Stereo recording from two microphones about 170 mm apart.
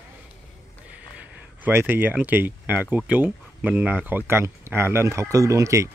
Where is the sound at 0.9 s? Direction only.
10° right (ahead or behind).